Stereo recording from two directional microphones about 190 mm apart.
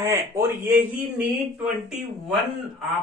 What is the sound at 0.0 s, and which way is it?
Speech, 15° right (ahead or behind).